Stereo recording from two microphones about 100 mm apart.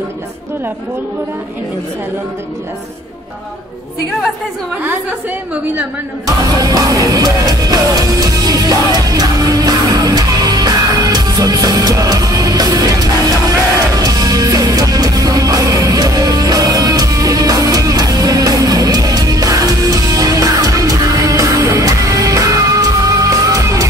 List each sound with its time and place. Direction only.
6.2 s music: 40° right (ahead or behind)